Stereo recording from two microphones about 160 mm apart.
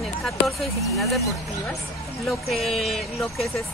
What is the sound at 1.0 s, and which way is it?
Speech, centre (ahead or behind).